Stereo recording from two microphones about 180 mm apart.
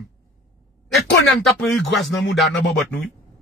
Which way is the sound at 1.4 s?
Centre (ahead or behind).